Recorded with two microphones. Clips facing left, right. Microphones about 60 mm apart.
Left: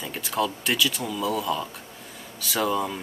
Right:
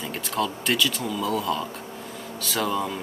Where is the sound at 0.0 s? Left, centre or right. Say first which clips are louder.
Even; centre.